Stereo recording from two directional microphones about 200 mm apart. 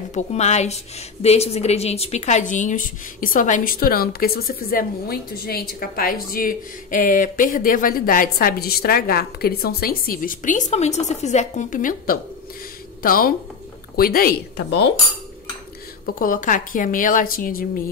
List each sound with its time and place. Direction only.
0.1 s a woman's voice: 35° left (ahead or behind); by 14.9 s 50° left (ahead or behind)
16.2 s a woman's voice: 40° left (ahead or behind)